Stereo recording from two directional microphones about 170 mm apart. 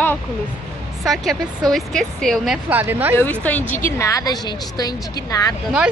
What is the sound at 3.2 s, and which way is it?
A woman's voice, 10° left (ahead or behind).